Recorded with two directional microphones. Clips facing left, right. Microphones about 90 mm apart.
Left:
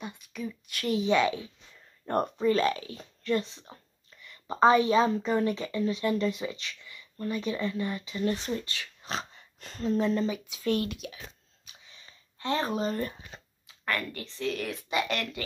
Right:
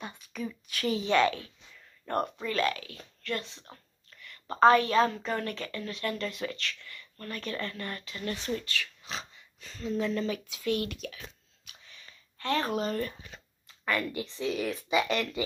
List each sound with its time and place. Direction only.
0.0 s speech: 5° left (ahead or behind)
2.0 s a woman's voice: 25° left (ahead or behind)
9.0 s dog: 40° left (ahead or behind)
9.8 s speech: 35° left (ahead or behind)
10.2 s speech: 20° left (ahead or behind)
10.6 s speech: 35° left (ahead or behind)
10.9 s a woman's voice: 15° left (ahead or behind)
11.9 s a sound: 25° left (ahead or behind)
13.8 s speech: 5° right (ahead or behind)